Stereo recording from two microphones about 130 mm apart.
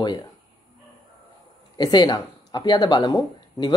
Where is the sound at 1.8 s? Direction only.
30° left (ahead or behind).